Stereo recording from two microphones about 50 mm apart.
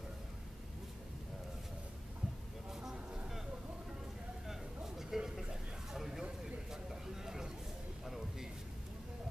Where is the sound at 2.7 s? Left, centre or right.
Centre.